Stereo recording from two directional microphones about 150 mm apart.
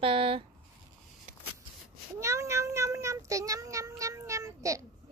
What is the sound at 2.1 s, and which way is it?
Meow, 20° right (ahead or behind).